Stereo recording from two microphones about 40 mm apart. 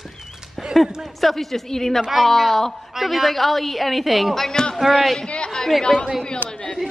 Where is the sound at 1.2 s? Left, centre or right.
Centre.